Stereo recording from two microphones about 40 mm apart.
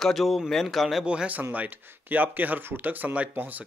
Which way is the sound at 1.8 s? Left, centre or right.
Right.